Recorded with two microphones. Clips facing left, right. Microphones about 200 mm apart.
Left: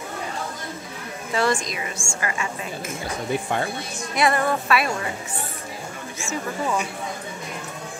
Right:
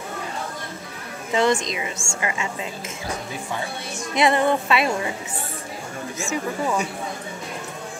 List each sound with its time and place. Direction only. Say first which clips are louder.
1.3 s a woman's voice: right 3 dB; 20° right (ahead or behind)
4.1 s a woman's voice: right 2 dB; 20° right (ahead or behind)
6.2 s speech: right 2 dB; 15° right (ahead or behind)